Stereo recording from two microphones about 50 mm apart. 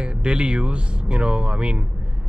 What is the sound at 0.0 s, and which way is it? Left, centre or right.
Speech, centre.